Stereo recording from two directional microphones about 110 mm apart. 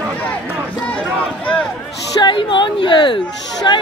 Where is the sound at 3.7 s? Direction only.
40° left (ahead or behind).